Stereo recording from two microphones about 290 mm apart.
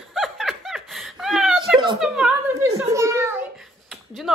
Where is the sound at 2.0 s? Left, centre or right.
Centre.